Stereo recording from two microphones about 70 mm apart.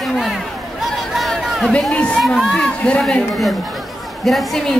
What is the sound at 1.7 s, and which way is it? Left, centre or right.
Speech, centre.